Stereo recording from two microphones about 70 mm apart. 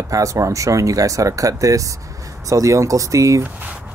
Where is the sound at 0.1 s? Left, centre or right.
Right.